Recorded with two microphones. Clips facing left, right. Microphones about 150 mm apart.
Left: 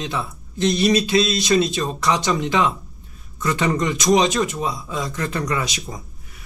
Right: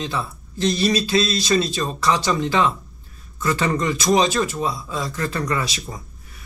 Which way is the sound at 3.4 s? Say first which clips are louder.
Even; 20° left (ahead or behind).